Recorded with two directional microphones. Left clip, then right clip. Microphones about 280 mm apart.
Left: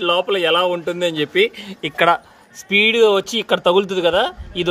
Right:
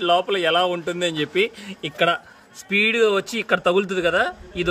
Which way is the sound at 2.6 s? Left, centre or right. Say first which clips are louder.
Left 5 dB; right.